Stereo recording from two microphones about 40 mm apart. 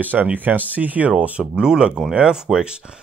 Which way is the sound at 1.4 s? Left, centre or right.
Centre.